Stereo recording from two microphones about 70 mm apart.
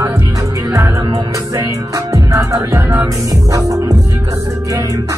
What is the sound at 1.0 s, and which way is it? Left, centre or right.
Music, right.